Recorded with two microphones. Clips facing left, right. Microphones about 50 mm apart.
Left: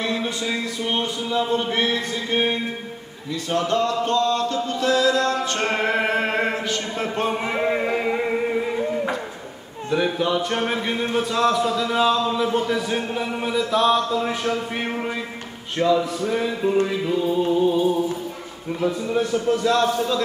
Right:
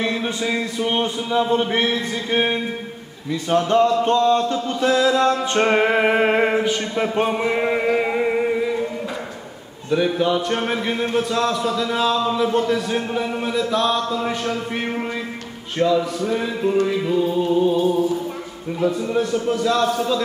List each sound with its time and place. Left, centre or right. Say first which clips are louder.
0.0 s speech: right 2 dB; centre
3.3 s music: right 4 dB; right
9.8 s a man's voice: right 3 dB; centre